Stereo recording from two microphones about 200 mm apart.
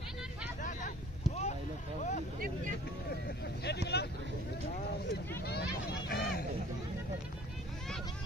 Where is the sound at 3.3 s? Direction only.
55° left (ahead or behind).